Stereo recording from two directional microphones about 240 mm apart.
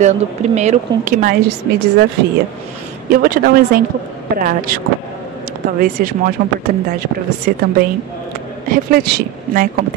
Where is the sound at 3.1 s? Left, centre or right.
Right.